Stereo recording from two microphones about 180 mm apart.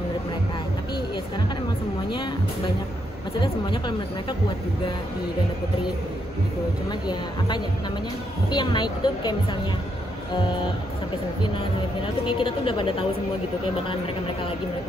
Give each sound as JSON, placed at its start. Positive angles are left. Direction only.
{"t": 3.3, "sound": "speech", "side_deg": 25}
{"t": 6.9, "sound": "speech", "side_deg": 25}
{"t": 12.3, "sound": "speech", "side_deg": 30}